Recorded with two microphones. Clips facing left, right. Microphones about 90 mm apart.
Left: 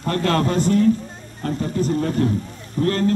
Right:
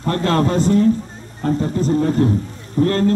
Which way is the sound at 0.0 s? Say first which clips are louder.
Right 2 dB; 30° right (ahead or behind).